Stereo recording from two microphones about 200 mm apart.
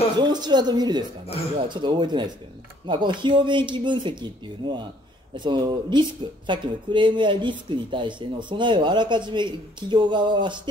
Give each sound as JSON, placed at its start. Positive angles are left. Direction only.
{"t": 0.2, "sound": "speech", "side_deg": -20}